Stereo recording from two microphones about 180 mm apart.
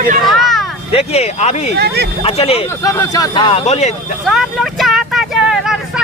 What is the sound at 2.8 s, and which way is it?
Speech, 20° left (ahead or behind).